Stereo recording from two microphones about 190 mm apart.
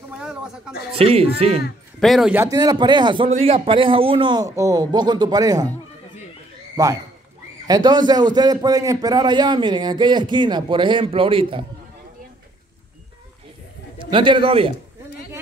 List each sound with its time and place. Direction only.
0.2 s a sound: 5° right (ahead or behind)
0.9 s speech: 30° right (ahead or behind)
2.0 s speech: centre (ahead or behind)
2.4 s a man's voice: 20° right (ahead or behind)
6.8 s a man's voice: 20° right (ahead or behind)
14.1 s a man's voice: 25° right (ahead or behind)